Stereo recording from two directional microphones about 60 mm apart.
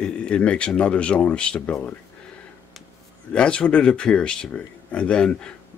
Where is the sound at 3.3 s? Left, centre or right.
Centre.